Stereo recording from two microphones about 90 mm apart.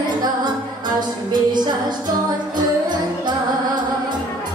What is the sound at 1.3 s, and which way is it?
Music, 55° right (ahead or behind).